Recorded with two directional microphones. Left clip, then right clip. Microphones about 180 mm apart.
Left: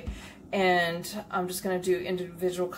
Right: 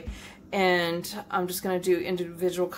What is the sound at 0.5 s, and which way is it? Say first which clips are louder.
A woman's voice: right 1 dB; 50° right (ahead or behind).